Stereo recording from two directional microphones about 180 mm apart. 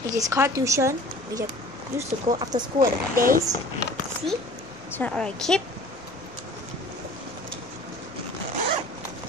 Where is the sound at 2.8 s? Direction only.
50° right (ahead or behind).